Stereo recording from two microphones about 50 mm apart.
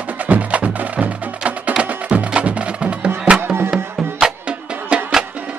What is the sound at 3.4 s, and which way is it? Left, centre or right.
Music, right.